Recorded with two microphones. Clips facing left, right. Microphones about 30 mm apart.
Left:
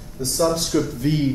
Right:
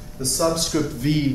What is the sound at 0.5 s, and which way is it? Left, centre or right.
Speech, centre.